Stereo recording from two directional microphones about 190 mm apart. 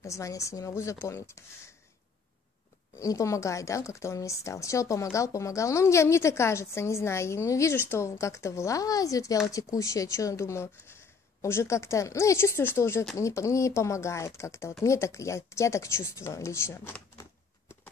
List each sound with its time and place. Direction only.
0.0 s a woman's voice: 15° left (ahead or behind)
3.0 s a woman's voice: 15° left (ahead or behind)